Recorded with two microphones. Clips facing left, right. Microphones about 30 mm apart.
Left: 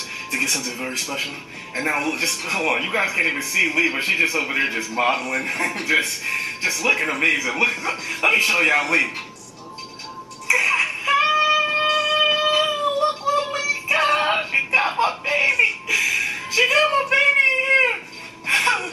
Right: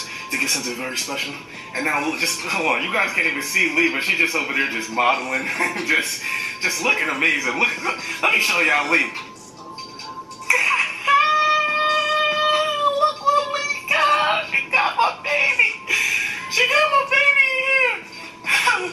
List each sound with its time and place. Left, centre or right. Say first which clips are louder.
0.3 s a man's voice: even; centre
10.5 s music: even; centre
13.2 s a sound: right 2 dB; centre
13.9 s music: right 2 dB; centre
17.1 s a sound: even; centre
18.5 s music: right 1 dB; centre